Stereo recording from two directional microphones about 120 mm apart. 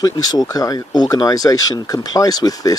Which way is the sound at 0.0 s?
35° left (ahead or behind).